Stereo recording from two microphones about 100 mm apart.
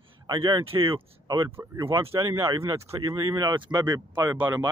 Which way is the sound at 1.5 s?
20° right (ahead or behind).